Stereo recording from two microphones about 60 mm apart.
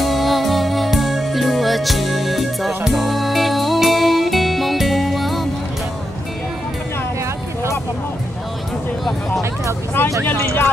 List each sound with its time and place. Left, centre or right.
0.0 s music: centre
10.0 s vehicle: left